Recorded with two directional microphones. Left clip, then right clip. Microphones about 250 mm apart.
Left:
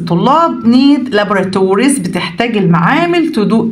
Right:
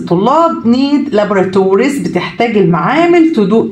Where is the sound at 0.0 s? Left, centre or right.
Left.